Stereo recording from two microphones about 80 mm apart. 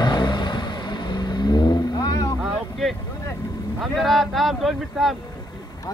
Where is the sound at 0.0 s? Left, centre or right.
Left.